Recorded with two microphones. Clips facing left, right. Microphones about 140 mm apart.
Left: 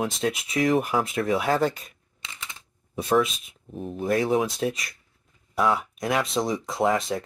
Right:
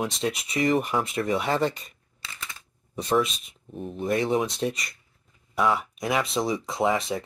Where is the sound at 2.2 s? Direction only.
20° left (ahead or behind).